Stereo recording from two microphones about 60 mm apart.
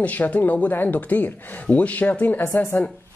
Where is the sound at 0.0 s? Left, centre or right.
Left.